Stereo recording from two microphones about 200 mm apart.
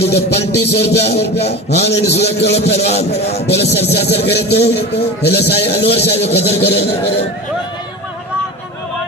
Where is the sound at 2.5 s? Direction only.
30° left (ahead or behind).